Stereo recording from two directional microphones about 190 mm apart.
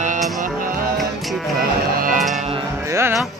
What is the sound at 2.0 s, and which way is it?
Music, 45° right (ahead or behind).